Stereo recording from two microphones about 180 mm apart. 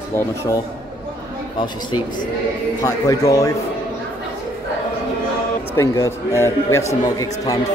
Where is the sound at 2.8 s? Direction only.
20° left (ahead or behind).